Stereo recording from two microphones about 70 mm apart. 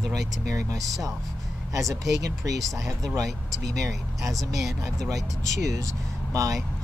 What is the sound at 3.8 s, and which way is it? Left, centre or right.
Speech, right.